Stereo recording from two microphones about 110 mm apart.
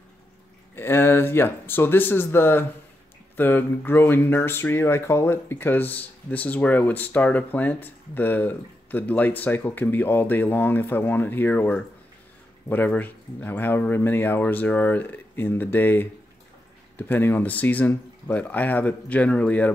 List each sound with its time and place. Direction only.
0.7 s speech: 20° left (ahead or behind)